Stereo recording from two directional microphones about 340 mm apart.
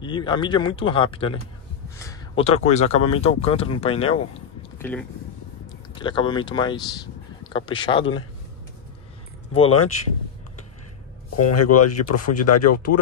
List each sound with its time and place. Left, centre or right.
0.0 s speech: centre
2.0 s a sound: centre
3.2 s speech: centre
4.7 s speech: centre
9.6 s speech: left
11.3 s speech: left